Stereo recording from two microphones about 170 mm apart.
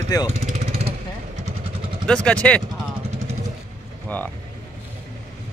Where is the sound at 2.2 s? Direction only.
5° left (ahead or behind).